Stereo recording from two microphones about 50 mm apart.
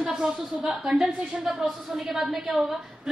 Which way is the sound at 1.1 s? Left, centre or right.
Centre.